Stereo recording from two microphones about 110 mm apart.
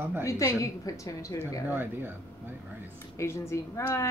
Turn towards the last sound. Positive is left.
turn(degrees=25)  # may be behind; listen again after turning